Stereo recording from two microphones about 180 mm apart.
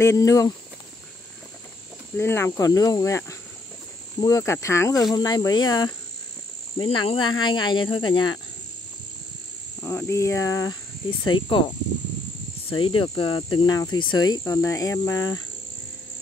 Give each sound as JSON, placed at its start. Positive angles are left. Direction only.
{"t": 0.0, "sound": "speech", "side_deg": 15}
{"t": 2.1, "sound": "speech", "side_deg": 15}
{"t": 9.8, "sound": "speech", "side_deg": 15}
{"t": 12.6, "sound": "speech", "side_deg": 30}